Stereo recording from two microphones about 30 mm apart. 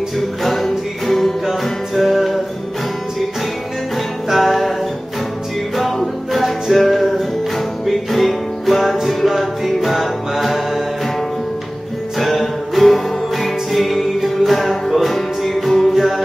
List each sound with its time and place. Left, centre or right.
0.4 s music: centre
2.0 s music: centre
4.3 s music: centre
5.8 s music: centre
10.3 s mantra: centre
12.2 s music: centre
15.9 s music: centre